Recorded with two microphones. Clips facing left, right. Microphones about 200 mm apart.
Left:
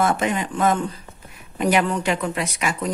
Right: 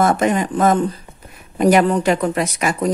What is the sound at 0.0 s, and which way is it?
A woman's voice, 45° right (ahead or behind).